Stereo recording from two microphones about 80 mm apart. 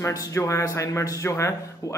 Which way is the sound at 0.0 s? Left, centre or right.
Left.